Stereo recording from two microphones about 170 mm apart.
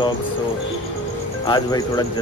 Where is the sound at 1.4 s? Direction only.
25° left (ahead or behind).